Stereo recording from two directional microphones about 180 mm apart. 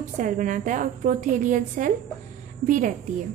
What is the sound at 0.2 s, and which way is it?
A woman's voice, 45° right (ahead or behind).